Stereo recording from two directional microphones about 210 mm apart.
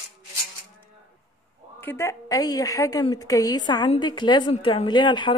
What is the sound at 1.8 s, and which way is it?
A woman's voice, 10° left (ahead or behind).